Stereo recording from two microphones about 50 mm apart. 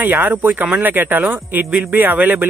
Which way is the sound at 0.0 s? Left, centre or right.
Right.